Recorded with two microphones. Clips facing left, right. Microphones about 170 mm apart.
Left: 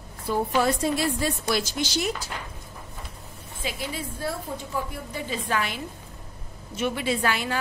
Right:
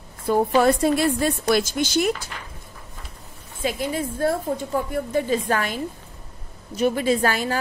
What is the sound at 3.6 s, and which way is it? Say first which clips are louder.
A woman's voice: right 8 dB; 50° right (ahead or behind).